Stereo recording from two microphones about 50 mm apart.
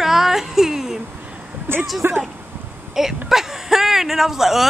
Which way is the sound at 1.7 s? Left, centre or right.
Right.